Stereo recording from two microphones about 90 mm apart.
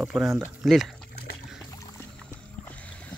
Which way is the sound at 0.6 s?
Centre (ahead or behind).